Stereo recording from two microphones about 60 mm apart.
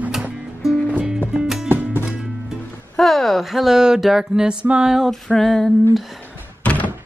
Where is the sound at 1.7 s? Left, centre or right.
Right.